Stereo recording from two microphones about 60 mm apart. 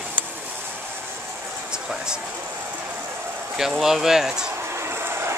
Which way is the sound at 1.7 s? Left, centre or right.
Centre.